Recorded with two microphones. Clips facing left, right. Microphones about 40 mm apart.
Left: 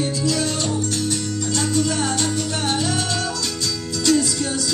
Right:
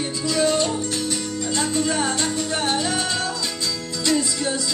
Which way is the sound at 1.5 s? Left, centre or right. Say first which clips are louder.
Left 1 dB; right.